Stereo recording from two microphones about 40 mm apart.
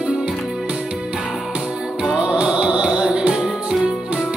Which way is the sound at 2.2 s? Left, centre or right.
Right.